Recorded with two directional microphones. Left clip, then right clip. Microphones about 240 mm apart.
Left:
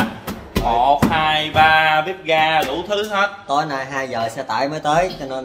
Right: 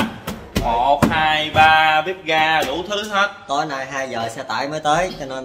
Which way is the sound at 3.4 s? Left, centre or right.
Left.